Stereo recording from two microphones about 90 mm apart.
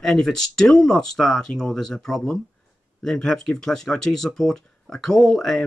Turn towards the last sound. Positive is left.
turn(degrees=5)  # may be behind; listen again after turning